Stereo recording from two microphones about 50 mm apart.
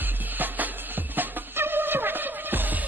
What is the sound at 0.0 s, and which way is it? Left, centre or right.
Music, right.